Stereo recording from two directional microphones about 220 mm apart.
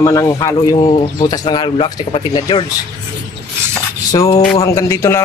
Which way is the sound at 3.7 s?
15° left (ahead or behind).